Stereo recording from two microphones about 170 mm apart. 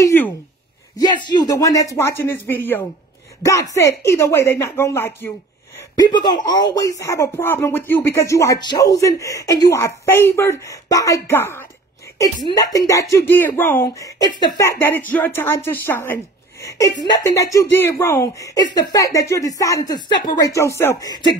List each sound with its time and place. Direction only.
0.0 s a sound: 10° left (ahead or behind)
0.9 s a woman's voice: 25° left (ahead or behind)
5.9 s a woman's voice: 25° left (ahead or behind)